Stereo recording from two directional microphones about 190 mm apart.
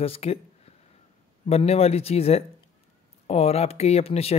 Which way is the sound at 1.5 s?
30° left (ahead or behind).